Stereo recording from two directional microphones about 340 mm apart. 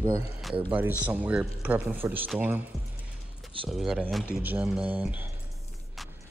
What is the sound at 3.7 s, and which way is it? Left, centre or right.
Speech, centre.